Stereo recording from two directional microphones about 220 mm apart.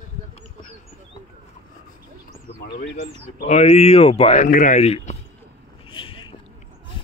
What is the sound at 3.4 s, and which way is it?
Speech, 30° left (ahead or behind).